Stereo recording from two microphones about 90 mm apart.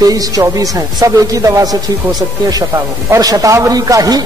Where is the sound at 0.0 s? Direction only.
40° right (ahead or behind).